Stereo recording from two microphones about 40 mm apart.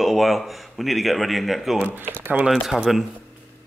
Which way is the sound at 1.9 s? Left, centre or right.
Right.